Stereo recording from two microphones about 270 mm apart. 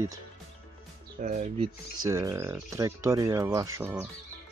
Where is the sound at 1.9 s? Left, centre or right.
Centre.